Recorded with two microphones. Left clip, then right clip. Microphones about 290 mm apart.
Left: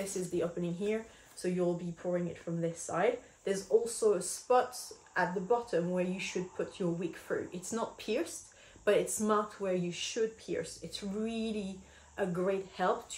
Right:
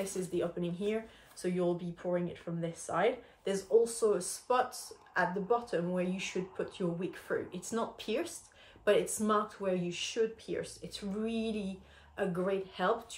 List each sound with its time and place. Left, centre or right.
0.3 s speech: centre